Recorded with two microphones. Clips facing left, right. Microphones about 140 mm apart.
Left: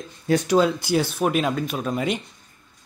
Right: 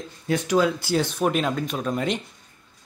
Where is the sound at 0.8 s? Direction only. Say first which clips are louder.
Left 1 dB; 10° left (ahead or behind).